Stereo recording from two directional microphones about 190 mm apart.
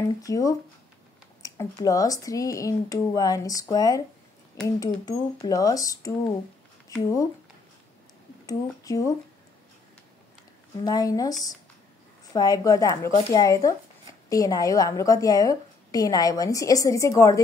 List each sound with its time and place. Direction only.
0.2 s a woman's voice: 20° left (ahead or behind)
8.5 s speech: 20° left (ahead or behind)
10.8 s a woman's voice: 20° left (ahead or behind)